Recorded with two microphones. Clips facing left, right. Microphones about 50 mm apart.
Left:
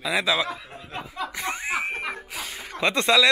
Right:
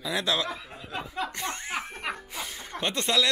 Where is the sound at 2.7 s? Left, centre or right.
Centre.